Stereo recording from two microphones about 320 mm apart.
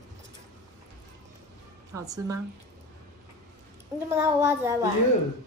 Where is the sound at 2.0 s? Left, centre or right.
Centre.